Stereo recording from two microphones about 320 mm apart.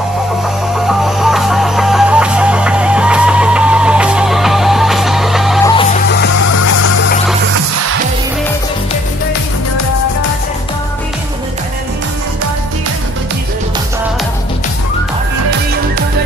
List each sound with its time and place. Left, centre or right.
0.7 s music: centre
5.8 s music: left